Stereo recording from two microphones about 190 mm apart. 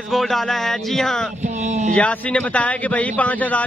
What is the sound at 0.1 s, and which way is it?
Speech, centre (ahead or behind).